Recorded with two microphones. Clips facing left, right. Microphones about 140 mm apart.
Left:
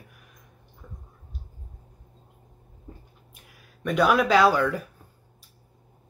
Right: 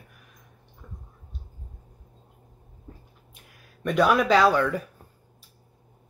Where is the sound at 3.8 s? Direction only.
Centre (ahead or behind).